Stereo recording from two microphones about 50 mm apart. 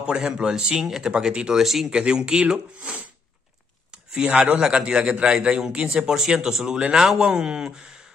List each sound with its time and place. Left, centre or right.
0.0 s a man's voice: centre
1.6 s speech: centre
1.9 s a man's voice: centre
3.9 s a man's voice: centre